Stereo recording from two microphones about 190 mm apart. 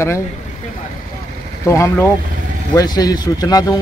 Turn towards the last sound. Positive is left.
turn(degrees=20)  # may be behind; listen again after turning